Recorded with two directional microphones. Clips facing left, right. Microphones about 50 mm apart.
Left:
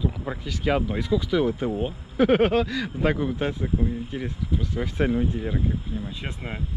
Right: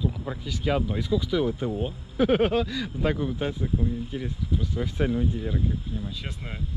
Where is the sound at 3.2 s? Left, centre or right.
Left.